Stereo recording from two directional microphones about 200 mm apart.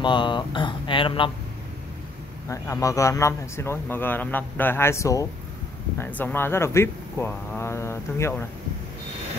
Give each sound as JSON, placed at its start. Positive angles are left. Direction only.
{"t": 0.0, "sound": "speech", "side_deg": 25}
{"t": 2.4, "sound": "a man's voice", "side_deg": 15}